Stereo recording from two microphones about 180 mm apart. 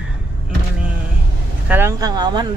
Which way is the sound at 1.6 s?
10° right (ahead or behind).